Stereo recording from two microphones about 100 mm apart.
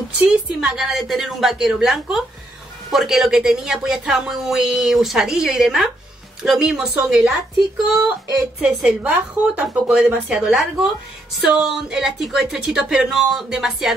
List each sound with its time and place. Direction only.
0.2 s a woman's voice: 5° right (ahead or behind)
8.5 s a woman's voice: 10° right (ahead or behind)
10.4 s a woman's voice: 5° right (ahead or behind)